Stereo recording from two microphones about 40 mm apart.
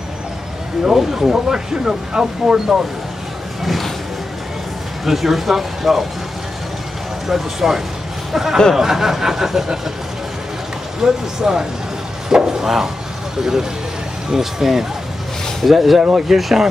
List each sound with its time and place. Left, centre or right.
0.8 s speech: centre
3.6 s music: centre
5.0 s speech: centre
7.2 s speech: centre
11.0 s speech: centre
12.3 s a sound: centre
13.4 s speech: centre
16.0 s speech: centre